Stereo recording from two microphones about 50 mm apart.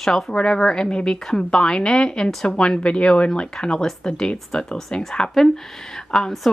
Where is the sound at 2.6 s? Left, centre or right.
Left.